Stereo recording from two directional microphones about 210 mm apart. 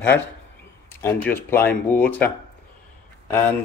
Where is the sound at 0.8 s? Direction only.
10° left (ahead or behind).